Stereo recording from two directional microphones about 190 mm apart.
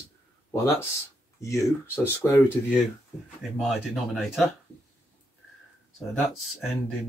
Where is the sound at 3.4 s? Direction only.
Centre (ahead or behind).